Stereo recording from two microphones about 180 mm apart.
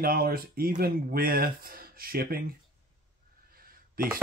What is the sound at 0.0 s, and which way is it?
Speech, 60° right (ahead or behind).